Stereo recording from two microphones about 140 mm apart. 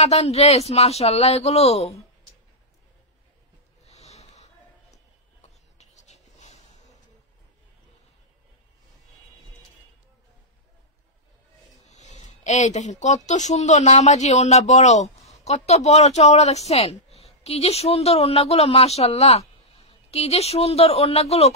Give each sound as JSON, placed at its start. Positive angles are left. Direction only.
{"t": 0.0, "sound": "speech", "side_deg": 50}
{"t": 3.8, "sound": "snort", "side_deg": 50}
{"t": 5.4, "sound": "writing", "side_deg": 55}
{"t": 11.9, "sound": "a woman's voice", "side_deg": 55}